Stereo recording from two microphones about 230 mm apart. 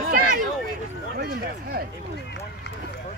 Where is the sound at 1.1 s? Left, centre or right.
Right.